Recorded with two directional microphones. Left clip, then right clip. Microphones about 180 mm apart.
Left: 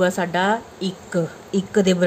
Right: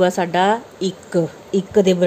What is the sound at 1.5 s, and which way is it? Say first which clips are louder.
Speech: right 4 dB; 10° right (ahead or behind).